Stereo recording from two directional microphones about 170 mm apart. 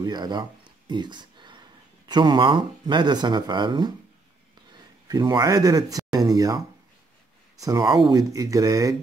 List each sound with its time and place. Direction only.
0.0 s a sound: 25° right (ahead or behind)
2.0 s speech: 25° right (ahead or behind)
5.0 s speech: 25° right (ahead or behind)